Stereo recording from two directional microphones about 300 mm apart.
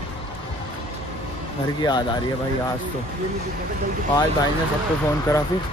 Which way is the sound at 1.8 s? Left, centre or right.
Centre.